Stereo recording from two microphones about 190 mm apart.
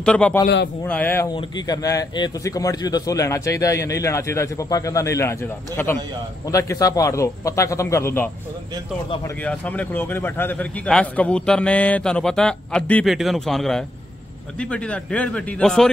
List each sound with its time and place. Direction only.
0.0 s a man's voice: 5° left (ahead or behind)
9.4 s a man's voice: 5° left (ahead or behind)